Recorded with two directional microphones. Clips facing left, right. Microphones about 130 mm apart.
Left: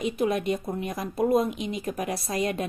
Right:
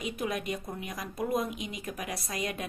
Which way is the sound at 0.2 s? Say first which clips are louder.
Left 8 dB; 30° left (ahead or behind).